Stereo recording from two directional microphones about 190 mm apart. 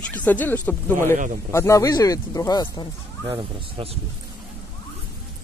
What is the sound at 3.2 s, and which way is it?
Speech, 30° right (ahead or behind).